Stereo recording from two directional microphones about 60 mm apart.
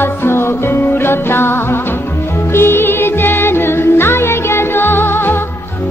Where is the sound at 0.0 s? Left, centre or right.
Left.